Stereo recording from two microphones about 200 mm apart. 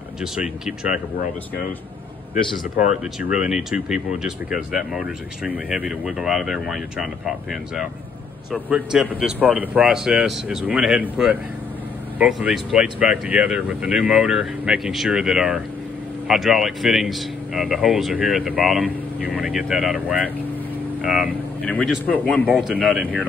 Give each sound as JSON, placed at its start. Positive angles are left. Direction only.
{"t": 0.2, "sound": "speech", "side_deg": -5}
{"t": 2.3, "sound": "speech", "side_deg": 35}
{"t": 3.2, "sound": "speech", "side_deg": -5}
{"t": 22.5, "sound": "speech", "side_deg": -5}